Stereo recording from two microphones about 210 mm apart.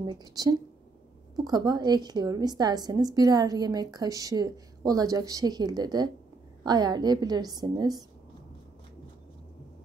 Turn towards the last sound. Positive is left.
turn(degrees=-20)  # may be behind; listen again after turning